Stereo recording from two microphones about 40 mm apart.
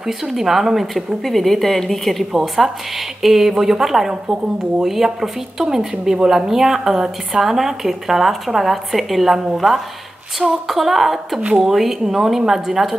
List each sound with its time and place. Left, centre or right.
0.0 s a woman's voice: centre
4.1 s a woman's voice: right
4.8 s a woman's voice: centre